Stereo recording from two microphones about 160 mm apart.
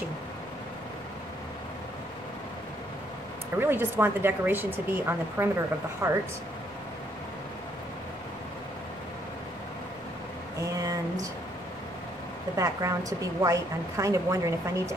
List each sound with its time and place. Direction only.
3.5 s speech: 15° right (ahead or behind)
10.6 s a sound: 20° right (ahead or behind)
12.5 s a woman's voice: 20° right (ahead or behind)